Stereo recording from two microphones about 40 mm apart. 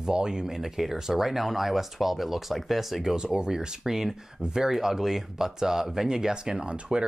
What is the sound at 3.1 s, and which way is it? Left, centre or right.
Speech, right.